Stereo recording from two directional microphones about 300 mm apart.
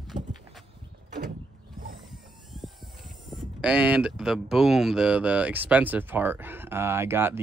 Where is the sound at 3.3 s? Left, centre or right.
Centre.